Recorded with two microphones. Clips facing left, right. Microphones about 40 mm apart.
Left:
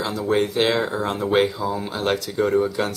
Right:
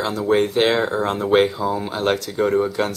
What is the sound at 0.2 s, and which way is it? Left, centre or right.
Speech, centre.